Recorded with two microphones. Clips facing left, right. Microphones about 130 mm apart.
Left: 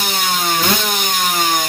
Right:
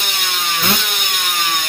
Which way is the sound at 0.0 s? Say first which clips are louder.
Left 5 dB; 40° left (ahead or behind).